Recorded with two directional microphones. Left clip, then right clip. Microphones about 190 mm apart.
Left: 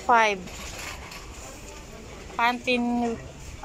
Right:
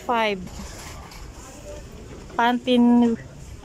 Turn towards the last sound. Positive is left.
turn(degrees=-30)  # may be behind; listen again after turning